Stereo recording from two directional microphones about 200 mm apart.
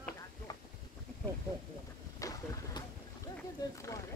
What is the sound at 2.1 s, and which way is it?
Vehicle, 15° left (ahead or behind).